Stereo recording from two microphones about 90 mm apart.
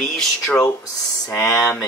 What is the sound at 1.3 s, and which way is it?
Speech, 30° left (ahead or behind).